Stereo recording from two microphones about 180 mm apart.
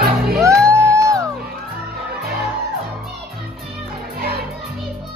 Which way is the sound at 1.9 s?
60° right (ahead or behind).